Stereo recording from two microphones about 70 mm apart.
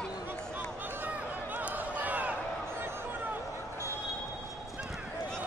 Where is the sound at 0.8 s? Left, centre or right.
Right.